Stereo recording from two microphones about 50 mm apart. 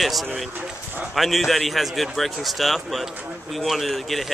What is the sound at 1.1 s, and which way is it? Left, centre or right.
Speech, centre.